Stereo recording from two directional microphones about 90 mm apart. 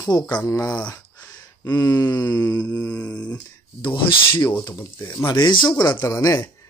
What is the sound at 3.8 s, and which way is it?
Speech, 20° left (ahead or behind).